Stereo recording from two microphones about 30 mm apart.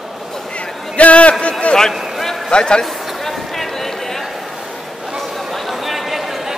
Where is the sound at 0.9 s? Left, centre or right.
Left.